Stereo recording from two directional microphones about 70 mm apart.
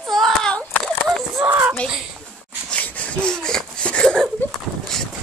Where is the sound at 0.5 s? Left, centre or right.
Centre.